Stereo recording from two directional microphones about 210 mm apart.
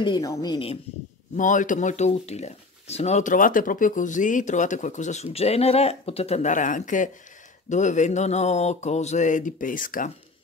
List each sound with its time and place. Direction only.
0.0 s a woman's voice: 20° left (ahead or behind)
1.3 s speech: 40° left (ahead or behind)